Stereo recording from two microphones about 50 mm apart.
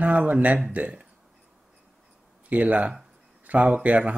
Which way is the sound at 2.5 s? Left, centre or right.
Right.